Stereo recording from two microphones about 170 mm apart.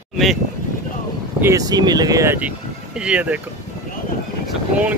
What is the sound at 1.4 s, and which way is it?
Speech, 20° right (ahead or behind).